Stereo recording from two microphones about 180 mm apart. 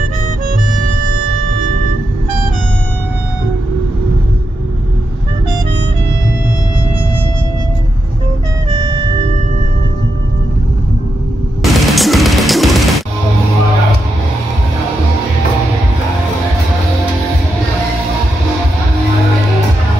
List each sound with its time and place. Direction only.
8.6 s music: 35° right (ahead or behind)
11.6 s music: centre (ahead or behind)